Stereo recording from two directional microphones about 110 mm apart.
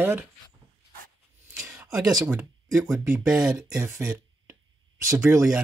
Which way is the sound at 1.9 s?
5° right (ahead or behind).